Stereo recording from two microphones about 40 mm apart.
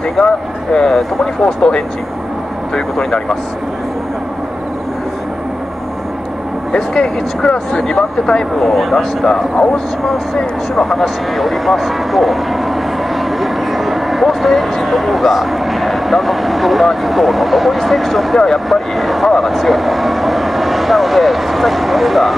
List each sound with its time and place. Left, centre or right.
0.2 s speech: centre
6.7 s speech: centre
8.5 s speech: centre
13.4 s speech: centre
18.9 s a sound: centre
19.2 s speech: centre